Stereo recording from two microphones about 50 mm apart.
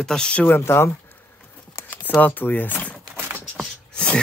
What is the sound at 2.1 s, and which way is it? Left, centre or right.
Speech, left.